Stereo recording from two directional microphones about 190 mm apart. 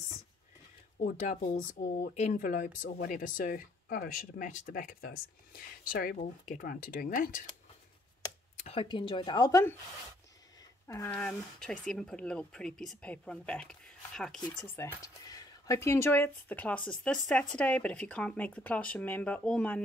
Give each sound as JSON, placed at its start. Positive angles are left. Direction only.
{"t": 0.9, "sound": "speech", "side_deg": 40}
{"t": 8.5, "sound": "speech", "side_deg": 30}
{"t": 10.9, "sound": "speech", "side_deg": 15}
{"t": 14.8, "sound": "speech", "side_deg": 20}